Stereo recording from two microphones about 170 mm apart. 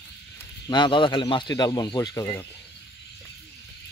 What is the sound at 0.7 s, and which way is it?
Speech, 25° left (ahead or behind).